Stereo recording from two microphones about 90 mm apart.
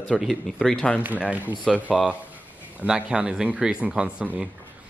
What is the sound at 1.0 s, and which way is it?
Speech, 15° right (ahead or behind).